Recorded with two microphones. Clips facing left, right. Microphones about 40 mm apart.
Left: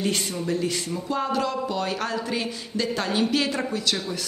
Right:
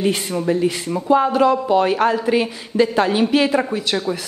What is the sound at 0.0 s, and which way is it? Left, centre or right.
A woman's voice, right.